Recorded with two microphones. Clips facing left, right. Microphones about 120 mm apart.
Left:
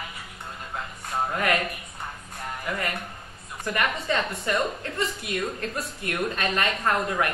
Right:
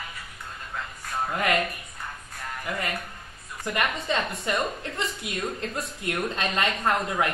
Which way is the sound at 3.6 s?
20° right (ahead or behind).